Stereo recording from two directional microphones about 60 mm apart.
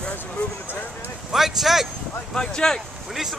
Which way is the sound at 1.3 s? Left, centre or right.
Centre.